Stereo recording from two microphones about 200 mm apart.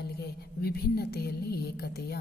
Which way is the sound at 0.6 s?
50° left (ahead or behind).